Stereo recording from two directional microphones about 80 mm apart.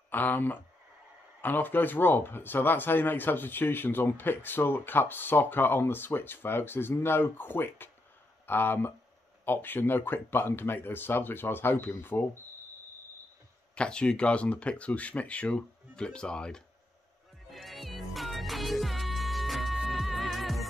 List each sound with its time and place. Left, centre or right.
0.1 s speech: left
13.7 s speech: centre
17.5 s music: centre